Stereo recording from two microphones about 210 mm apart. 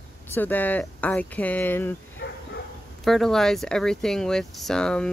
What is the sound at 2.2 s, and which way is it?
Bow-wow, 55° left (ahead or behind).